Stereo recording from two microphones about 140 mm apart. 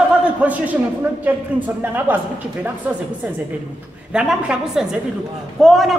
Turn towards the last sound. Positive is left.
turn(degrees=0)  # may be behind; listen again after turning